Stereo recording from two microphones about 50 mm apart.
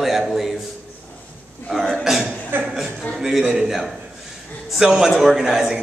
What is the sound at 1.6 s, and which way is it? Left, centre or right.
Speech, centre.